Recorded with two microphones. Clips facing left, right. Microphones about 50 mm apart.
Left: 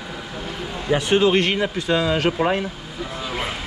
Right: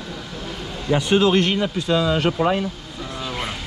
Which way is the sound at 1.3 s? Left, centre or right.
Left.